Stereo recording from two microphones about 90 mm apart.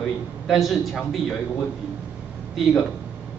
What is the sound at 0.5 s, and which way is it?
Speech, centre (ahead or behind).